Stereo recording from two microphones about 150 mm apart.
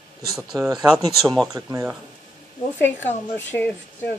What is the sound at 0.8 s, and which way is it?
Speech, centre (ahead or behind).